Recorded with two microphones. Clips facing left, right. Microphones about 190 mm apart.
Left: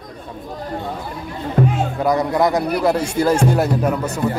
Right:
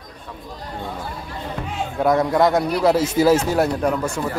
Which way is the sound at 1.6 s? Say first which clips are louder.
Left 17 dB; 55° left (ahead or behind).